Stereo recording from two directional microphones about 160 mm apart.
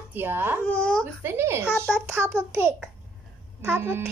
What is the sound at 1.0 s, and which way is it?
Speech, 15° right (ahead or behind).